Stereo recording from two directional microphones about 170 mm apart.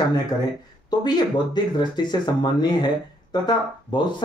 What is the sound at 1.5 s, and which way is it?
Speech, 25° left (ahead or behind).